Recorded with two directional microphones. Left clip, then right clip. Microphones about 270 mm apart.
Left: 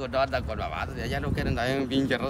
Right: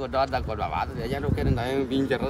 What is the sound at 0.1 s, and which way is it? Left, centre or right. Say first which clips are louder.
A man's voice: right 1 dB; centre.